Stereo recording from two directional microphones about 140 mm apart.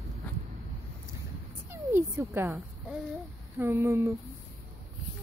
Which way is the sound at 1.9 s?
20° right (ahead or behind).